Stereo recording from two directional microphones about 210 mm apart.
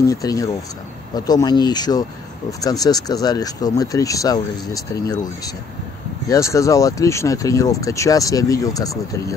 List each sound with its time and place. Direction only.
0.0 s speech: 15° left (ahead or behind)